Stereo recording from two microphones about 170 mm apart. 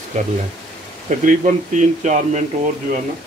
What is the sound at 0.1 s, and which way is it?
Speech, 45° right (ahead or behind).